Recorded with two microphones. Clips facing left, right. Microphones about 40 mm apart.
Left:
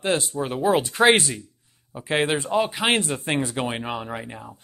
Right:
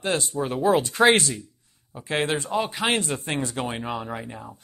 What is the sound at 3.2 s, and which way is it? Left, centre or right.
Speech, left.